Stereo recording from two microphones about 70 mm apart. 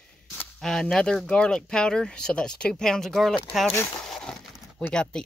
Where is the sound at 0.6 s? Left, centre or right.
Centre.